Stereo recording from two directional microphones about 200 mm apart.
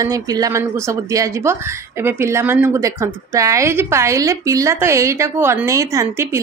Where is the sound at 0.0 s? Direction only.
15° right (ahead or behind).